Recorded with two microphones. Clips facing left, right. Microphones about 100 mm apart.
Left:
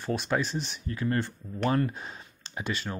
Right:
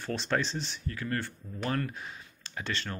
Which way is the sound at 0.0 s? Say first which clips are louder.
Left 2 dB; 10° left (ahead or behind).